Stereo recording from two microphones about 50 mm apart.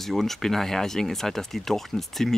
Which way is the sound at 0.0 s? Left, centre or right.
Centre.